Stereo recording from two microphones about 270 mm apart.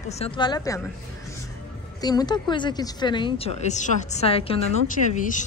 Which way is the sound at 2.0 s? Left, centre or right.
Centre.